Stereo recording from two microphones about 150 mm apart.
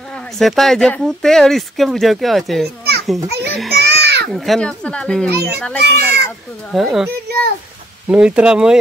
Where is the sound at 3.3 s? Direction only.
90° right.